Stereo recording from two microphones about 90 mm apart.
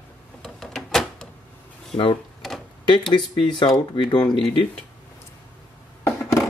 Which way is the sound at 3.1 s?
60° left (ahead or behind).